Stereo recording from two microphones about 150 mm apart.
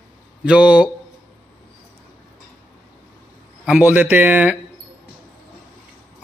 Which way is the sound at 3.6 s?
10° right (ahead or behind).